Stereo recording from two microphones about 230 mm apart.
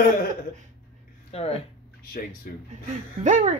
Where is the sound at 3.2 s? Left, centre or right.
Right.